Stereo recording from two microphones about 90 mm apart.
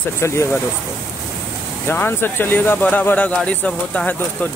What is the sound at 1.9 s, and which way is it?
Speech, 25° left (ahead or behind).